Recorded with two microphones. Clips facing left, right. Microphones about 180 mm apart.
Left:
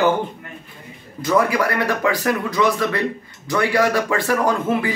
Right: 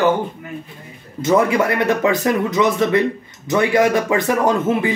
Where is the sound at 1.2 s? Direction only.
25° right (ahead or behind).